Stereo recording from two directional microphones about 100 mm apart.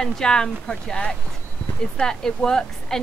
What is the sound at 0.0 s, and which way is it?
Speech, 5° left (ahead or behind).